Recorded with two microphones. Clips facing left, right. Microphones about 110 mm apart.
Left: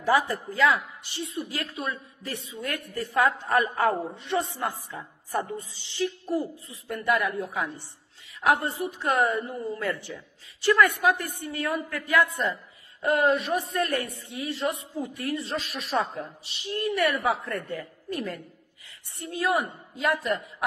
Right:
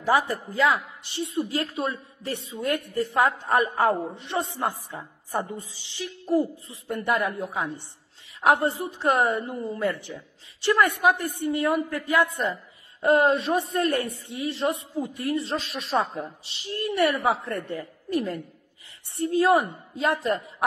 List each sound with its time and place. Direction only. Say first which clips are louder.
0.1 s a man's voice: right 1 dB; 20° right (ahead or behind)